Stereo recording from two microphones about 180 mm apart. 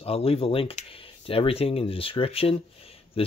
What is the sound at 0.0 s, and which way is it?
Speech, 30° left (ahead or behind).